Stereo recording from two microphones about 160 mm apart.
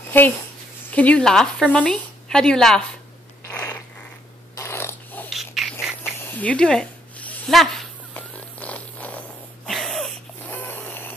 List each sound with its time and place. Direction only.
0.1 s speech: 10° left (ahead or behind)
3.4 s mechanisms: 15° left (ahead or behind)
4.6 s dog: 15° left (ahead or behind)
5.3 s a sound: centre (ahead or behind)
10.4 s snort: 10° left (ahead or behind)